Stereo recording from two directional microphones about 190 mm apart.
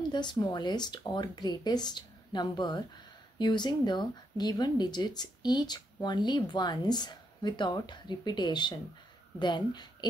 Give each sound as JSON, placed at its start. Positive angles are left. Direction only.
{"t": 0.1, "sound": "speech", "side_deg": 25}